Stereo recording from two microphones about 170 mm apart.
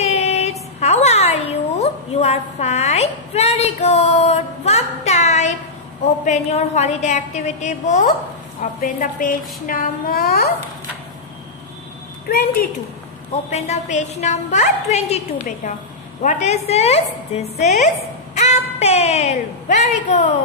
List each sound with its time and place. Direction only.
0.0 s a sound: 40° left (ahead or behind)
6.2 s a woman's voice: 40° left (ahead or behind); by 10.5 s 65° left (ahead or behind)
12.3 s a woman's voice: 60° left (ahead or behind)
13.5 s a woman's voice: 40° left (ahead or behind)